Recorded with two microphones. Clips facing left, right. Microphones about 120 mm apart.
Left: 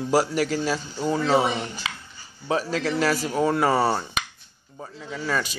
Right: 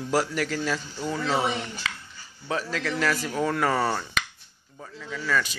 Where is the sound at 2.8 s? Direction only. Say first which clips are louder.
Left 3 dB; 35° left (ahead or behind).